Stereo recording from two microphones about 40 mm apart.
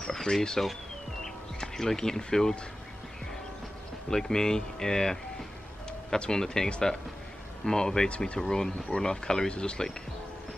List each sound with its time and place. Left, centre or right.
0.0 s speech: centre
1.2 s music: centre
4.1 s speech: centre
8.1 s speech: left
8.4 s speech: centre